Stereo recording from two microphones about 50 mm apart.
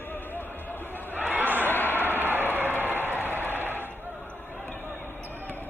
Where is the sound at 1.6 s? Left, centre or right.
Left.